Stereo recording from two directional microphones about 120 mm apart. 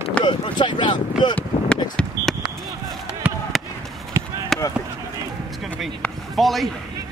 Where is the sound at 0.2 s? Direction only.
40° left (ahead or behind).